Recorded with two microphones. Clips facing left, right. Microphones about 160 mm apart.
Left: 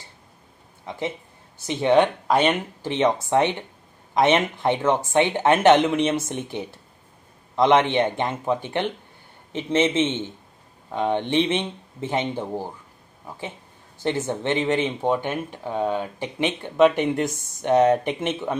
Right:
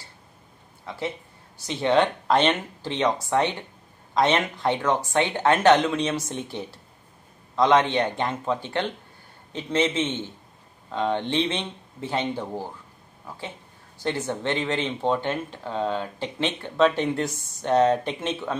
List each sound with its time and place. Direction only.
0.8 s speech: 20° left (ahead or behind)
14.0 s speech: 20° left (ahead or behind)